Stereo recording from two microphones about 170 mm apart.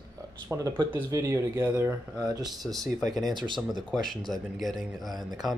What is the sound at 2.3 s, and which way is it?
Speech, 20° right (ahead or behind).